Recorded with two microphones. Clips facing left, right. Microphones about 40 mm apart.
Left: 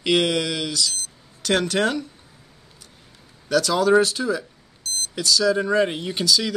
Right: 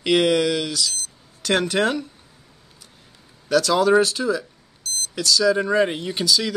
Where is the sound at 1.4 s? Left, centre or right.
Centre.